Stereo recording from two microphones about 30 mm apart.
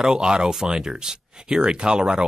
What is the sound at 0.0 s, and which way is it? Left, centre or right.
Speech, right.